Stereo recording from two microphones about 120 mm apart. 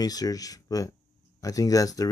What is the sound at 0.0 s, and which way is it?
Speech, 30° left (ahead or behind).